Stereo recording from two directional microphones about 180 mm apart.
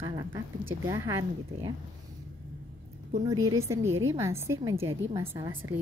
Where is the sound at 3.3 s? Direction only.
20° right (ahead or behind).